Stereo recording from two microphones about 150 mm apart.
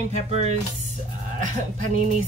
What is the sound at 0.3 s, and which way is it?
Music, 50° right (ahead or behind).